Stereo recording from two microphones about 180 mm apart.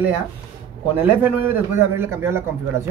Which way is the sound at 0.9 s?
10° right (ahead or behind).